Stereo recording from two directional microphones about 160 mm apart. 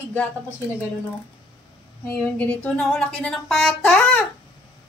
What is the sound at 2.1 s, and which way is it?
Speech, 5° left (ahead or behind).